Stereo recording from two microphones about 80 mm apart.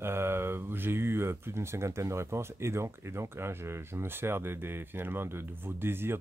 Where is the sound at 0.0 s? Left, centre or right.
Right.